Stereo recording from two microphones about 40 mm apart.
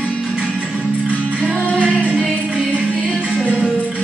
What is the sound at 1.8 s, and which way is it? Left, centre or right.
Music, left.